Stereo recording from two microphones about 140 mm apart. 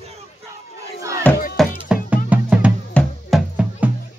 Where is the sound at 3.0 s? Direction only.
10° left (ahead or behind).